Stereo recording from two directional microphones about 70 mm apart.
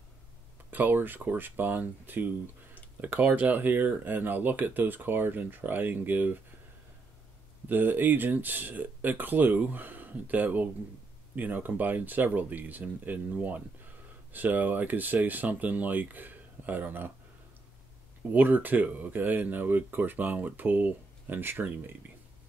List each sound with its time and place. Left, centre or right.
0.7 s speech: right
7.6 s speech: right
18.3 s speech: right